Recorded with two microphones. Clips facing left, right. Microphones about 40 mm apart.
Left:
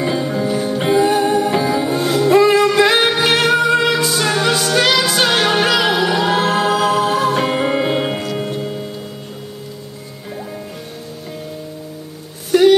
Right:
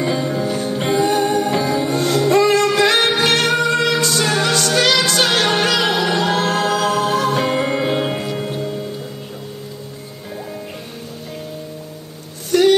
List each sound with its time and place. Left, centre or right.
0.0 s music: centre
12.4 s music: centre